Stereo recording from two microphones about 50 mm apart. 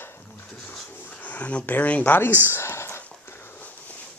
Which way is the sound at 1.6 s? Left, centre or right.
Left.